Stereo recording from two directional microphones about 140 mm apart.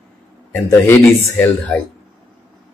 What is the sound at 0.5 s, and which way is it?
Speech, 15° left (ahead or behind).